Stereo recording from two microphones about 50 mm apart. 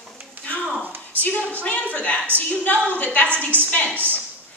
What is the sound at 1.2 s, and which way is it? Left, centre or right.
A woman's voice, left.